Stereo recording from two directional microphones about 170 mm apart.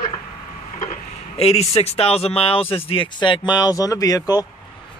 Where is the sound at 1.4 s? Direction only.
40° left (ahead or behind); by 4.4 s 20° left (ahead or behind).